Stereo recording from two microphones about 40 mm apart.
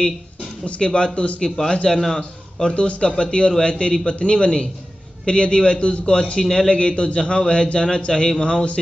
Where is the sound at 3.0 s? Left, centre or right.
Left.